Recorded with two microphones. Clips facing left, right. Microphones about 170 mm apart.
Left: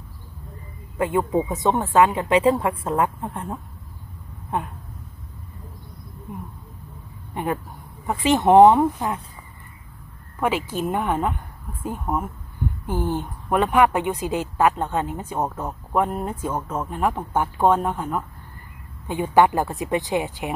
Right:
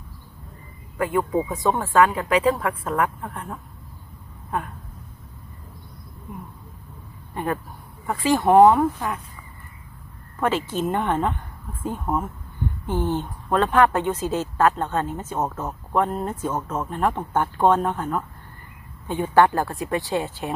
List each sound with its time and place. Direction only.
0.9 s speech: 25° left (ahead or behind)
7.3 s speech: 20° left (ahead or behind)
10.4 s speech: 10° left (ahead or behind)